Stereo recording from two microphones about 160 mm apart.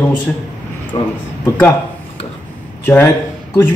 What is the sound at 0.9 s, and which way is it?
Speech, 30° left (ahead or behind).